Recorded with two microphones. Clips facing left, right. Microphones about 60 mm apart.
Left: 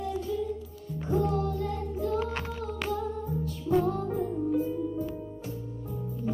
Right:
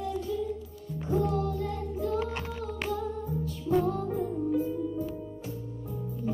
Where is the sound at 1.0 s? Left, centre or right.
Left.